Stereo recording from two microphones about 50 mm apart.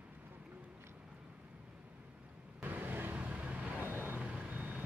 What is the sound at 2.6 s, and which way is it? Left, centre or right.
Vehicle, right.